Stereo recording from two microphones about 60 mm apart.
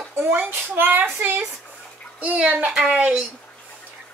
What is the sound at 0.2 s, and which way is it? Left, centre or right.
A child's voice, right.